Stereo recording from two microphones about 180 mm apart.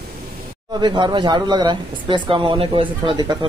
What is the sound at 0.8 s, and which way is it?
Speech, 25° right (ahead or behind).